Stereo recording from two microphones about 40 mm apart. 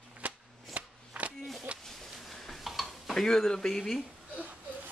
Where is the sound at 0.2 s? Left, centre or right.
Right.